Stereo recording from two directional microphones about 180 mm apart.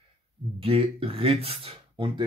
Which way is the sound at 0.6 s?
30° right (ahead or behind).